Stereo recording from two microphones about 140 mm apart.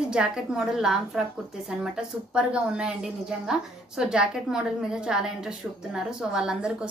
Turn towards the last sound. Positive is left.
turn(degrees=-5)  # may be behind; listen again after turning